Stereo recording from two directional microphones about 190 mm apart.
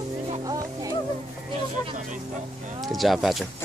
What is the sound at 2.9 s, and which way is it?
Speech, centre (ahead or behind).